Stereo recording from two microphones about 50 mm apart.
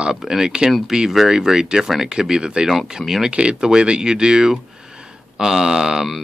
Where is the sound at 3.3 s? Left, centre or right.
Right.